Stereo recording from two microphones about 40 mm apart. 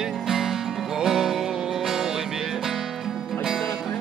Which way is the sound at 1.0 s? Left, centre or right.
Centre.